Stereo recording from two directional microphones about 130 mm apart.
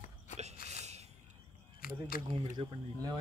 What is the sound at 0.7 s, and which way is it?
Sneeze, 60° right (ahead or behind).